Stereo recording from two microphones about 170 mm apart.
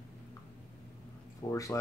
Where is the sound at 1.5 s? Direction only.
15° left (ahead or behind).